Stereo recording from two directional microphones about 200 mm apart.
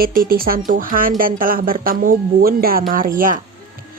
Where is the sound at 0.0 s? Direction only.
45° right (ahead or behind).